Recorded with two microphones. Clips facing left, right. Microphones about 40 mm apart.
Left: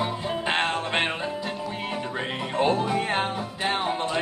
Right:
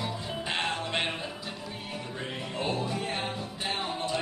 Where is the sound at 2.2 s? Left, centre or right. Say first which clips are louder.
Left 9 dB; left.